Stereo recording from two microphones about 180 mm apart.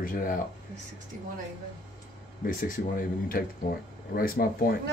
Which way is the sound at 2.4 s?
50° left (ahead or behind).